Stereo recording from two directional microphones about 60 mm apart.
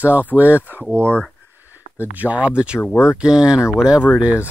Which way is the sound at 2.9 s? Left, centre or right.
Left.